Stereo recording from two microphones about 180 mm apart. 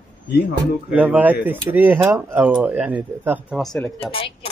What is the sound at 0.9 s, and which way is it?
Speech, 10° right (ahead or behind).